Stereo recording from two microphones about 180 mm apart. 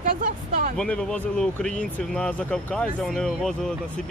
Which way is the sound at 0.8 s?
5° left (ahead or behind).